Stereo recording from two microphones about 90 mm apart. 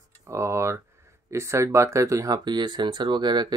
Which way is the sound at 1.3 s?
30° right (ahead or behind).